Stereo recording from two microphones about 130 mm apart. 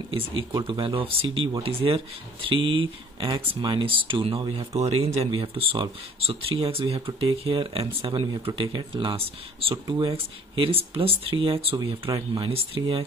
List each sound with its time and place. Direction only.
0.7 s speech: 45° right (ahead or behind)